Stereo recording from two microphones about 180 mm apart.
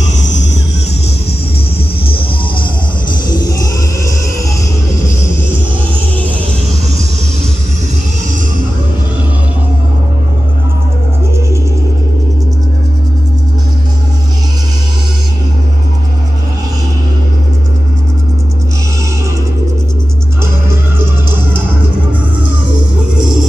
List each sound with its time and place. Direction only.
0.0 s music: 90° left
3.3 s music: 20° left (ahead or behind)
20.6 s music: 15° right (ahead or behind)
23.1 s music: centre (ahead or behind)